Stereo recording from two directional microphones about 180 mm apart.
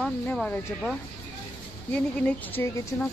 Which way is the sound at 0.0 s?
10° left (ahead or behind).